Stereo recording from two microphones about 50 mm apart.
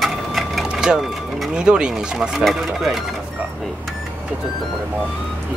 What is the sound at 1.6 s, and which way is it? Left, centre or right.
Speech, centre.